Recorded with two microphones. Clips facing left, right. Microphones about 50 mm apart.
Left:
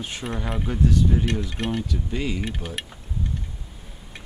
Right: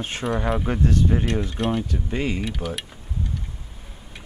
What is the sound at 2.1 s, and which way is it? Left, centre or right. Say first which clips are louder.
Speech: right 3 dB; right.